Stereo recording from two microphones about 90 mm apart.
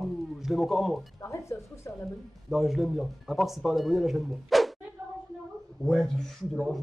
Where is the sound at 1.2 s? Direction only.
30° left (ahead or behind).